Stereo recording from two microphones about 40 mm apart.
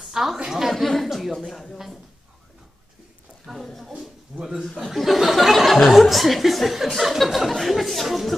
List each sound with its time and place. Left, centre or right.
0.1 s a sound: centre
0.4 s a woman's voice: centre
0.7 s a woman's voice: centre
1.4 s a woman's voice: centre
3.5 s speech: centre
4.3 s a man's voice: centre
4.7 s speech: centre